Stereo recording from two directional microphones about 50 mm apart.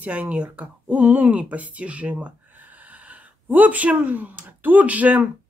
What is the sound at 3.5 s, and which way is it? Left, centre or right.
Speech, right.